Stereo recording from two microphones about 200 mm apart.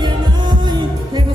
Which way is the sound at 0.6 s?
20° right (ahead or behind).